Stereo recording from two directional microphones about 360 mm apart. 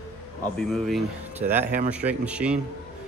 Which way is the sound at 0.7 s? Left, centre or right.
Centre.